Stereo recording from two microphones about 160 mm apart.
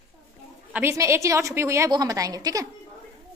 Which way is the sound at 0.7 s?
15° right (ahead or behind).